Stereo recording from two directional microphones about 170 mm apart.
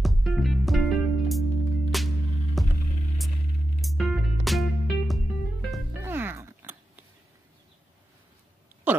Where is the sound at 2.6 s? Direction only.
Centre (ahead or behind).